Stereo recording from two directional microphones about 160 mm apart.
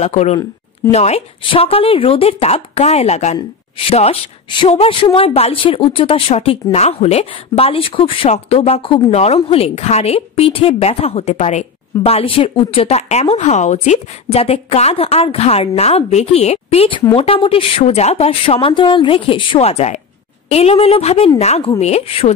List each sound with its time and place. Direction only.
0.0 s a woman's voice: 45° left (ahead or behind)